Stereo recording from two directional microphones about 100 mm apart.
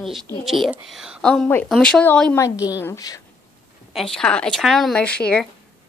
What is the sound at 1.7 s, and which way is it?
Speech, 10° left (ahead or behind).